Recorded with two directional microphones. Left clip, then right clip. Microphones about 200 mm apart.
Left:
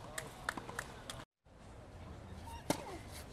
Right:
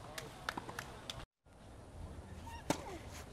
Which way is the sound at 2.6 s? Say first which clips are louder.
Even; 10° left (ahead or behind).